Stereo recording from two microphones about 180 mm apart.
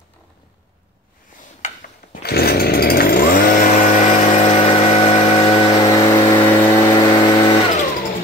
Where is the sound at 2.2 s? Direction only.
60° left (ahead or behind); by 5.5 s 35° left (ahead or behind).